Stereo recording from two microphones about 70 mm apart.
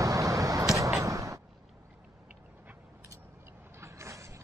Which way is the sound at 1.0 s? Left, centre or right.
Right.